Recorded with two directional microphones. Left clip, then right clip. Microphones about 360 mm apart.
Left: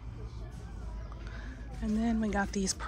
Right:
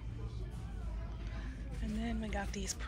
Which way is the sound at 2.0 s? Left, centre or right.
Left.